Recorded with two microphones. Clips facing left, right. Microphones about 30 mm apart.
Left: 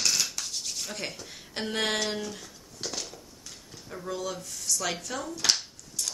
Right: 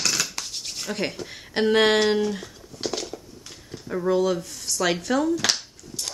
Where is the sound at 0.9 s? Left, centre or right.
Right.